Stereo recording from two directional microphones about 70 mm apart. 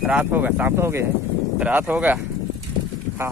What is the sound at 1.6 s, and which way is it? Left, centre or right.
Speech, right.